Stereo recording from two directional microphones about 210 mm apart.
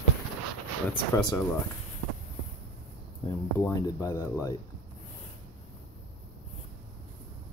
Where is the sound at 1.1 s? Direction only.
15° left (ahead or behind).